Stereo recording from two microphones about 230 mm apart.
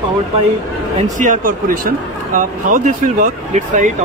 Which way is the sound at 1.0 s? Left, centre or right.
Right.